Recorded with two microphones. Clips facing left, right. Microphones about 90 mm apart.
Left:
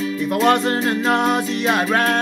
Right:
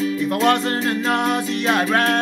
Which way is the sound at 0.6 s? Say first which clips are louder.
Left 2 dB; 20° left (ahead or behind).